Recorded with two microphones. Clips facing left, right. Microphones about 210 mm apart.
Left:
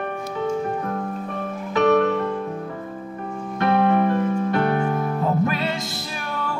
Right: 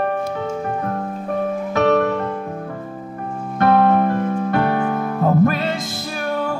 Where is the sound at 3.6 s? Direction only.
45° right (ahead or behind).